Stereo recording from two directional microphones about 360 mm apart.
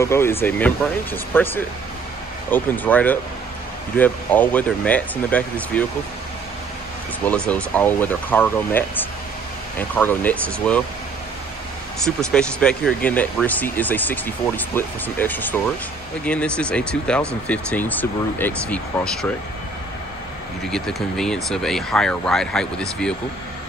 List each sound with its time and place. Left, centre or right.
0.0 s speech: centre
7.2 s speech: centre
12.0 s speech: centre
20.7 s speech: centre